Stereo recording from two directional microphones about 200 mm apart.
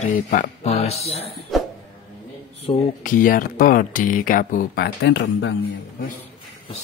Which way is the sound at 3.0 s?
40° left (ahead or behind).